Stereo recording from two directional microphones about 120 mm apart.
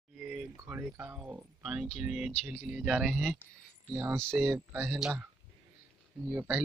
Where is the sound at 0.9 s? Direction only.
10° right (ahead or behind).